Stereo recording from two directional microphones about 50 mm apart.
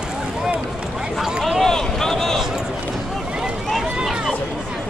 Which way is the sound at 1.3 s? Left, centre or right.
Centre.